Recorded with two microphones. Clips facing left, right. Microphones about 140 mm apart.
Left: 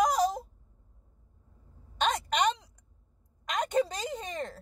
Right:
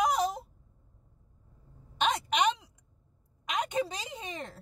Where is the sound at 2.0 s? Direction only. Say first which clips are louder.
Even; centre (ahead or behind).